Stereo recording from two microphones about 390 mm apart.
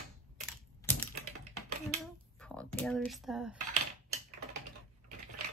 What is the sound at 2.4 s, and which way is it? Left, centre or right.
Speech, centre.